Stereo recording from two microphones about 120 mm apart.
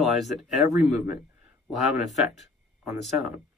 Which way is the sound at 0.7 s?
70° left (ahead or behind).